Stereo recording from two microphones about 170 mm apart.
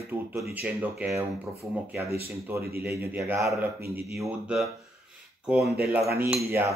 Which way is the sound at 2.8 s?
10° right (ahead or behind).